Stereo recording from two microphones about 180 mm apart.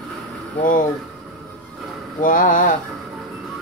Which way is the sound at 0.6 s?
50° left (ahead or behind).